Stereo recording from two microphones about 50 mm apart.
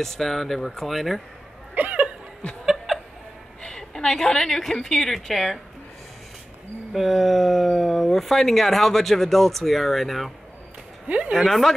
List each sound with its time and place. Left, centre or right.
0.0 s speech: centre
1.8 s chuckle: right
2.9 s a sound: centre
3.6 s a woman's voice: centre
6.9 s speech: centre
11.1 s speech: right
11.3 s speech: centre